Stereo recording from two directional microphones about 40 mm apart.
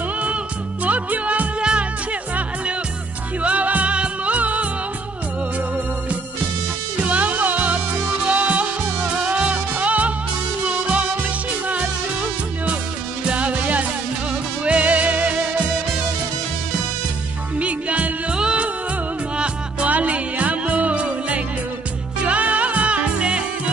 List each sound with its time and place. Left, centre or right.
0.8 s music: right
1.6 s music: right
3.4 s music: right
7.0 s music: right
11.7 s music: right
17.6 s music: right
18.3 s music: right